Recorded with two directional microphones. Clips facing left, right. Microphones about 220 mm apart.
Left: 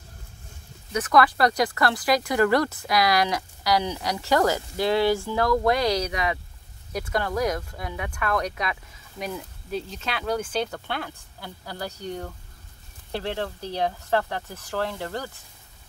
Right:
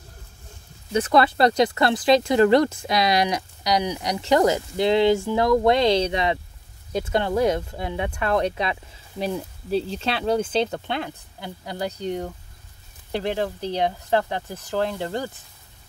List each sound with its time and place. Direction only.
0.9 s speech: 25° right (ahead or behind)